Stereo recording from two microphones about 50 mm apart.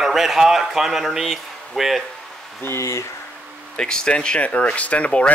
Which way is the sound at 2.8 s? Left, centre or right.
Left.